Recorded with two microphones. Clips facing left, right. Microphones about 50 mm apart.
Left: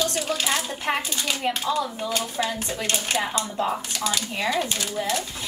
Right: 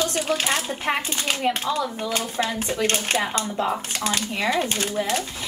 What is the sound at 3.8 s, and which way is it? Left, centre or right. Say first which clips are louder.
Speech: right 2 dB; right.